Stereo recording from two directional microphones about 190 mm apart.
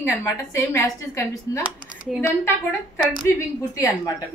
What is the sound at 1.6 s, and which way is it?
Speech, 5° right (ahead or behind).